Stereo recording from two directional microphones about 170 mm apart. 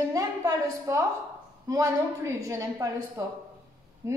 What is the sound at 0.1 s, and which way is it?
A woman's voice, 20° right (ahead or behind).